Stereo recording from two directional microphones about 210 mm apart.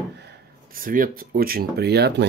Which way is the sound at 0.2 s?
45° right (ahead or behind).